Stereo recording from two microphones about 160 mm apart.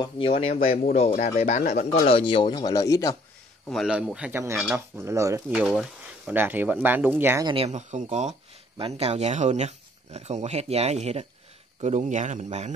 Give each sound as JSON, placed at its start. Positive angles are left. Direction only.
{"t": 0.4, "sound": "speech", "side_deg": 40}
{"t": 2.0, "sound": "speech", "side_deg": 35}
{"t": 3.6, "sound": "speech", "side_deg": 0}
{"t": 5.7, "sound": "a sound", "side_deg": 0}
{"t": 6.3, "sound": "speech", "side_deg": -10}
{"t": 7.4, "sound": "speech", "side_deg": -35}